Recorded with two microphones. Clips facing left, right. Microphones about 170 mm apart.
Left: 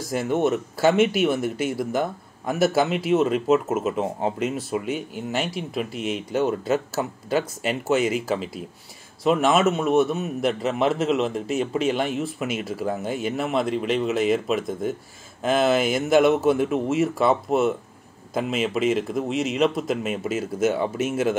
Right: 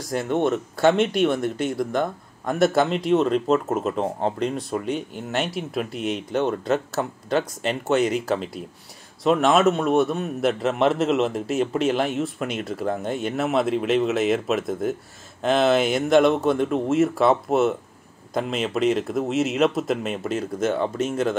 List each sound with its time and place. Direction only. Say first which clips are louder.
0.1 s speech: even; 5° left (ahead or behind)